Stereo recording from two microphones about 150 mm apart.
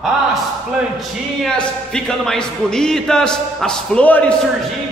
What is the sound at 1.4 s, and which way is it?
A man's voice, 5° left (ahead or behind).